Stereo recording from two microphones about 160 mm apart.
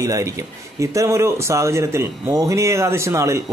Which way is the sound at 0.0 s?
20° right (ahead or behind).